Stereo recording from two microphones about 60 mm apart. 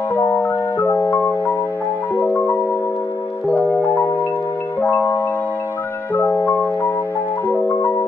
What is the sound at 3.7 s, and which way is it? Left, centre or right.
Music, left.